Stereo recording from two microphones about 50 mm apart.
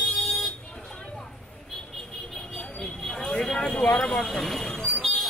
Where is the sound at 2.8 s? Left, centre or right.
Centre.